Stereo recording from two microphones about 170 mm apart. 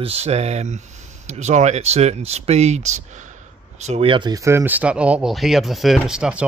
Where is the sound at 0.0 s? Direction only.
35° right (ahead or behind).